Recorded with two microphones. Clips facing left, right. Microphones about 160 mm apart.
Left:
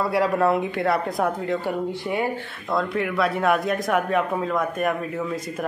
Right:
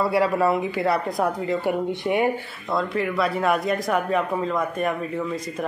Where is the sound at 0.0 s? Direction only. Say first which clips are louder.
Even; centre (ahead or behind).